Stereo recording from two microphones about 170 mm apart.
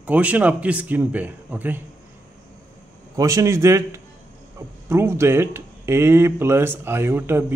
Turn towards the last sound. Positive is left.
turn(degrees=-15)  # may be behind; listen again after turning